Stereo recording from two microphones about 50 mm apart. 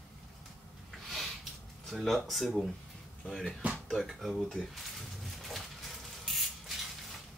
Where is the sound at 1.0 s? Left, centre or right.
Centre.